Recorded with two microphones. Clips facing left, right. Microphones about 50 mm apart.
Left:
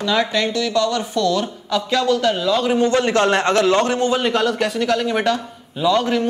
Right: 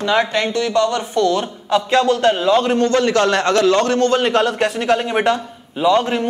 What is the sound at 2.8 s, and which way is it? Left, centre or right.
A man's voice, left.